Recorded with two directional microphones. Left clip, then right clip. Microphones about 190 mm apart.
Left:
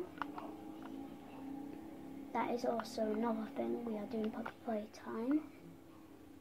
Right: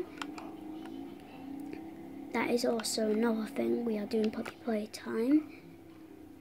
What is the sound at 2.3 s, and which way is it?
A woman's voice, 55° right (ahead or behind).